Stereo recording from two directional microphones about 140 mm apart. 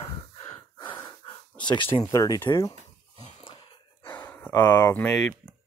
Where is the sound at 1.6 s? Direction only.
35° left (ahead or behind).